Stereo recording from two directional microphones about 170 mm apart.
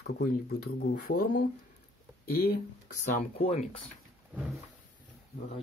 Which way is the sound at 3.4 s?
40° left (ahead or behind).